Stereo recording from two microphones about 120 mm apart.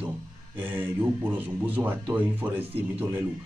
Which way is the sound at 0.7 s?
15° right (ahead or behind).